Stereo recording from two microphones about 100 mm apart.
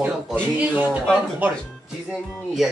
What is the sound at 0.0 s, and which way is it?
Speech, 15° right (ahead or behind).